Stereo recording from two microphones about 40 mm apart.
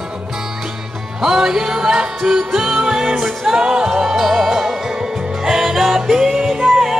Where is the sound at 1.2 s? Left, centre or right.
Centre.